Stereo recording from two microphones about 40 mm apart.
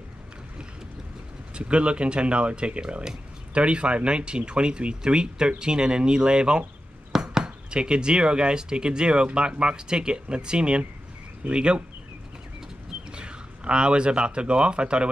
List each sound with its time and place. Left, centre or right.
1.5 s speech: right
13.1 s speech: right